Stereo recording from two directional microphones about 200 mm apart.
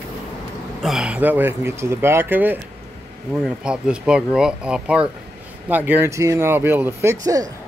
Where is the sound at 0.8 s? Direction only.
Centre (ahead or behind).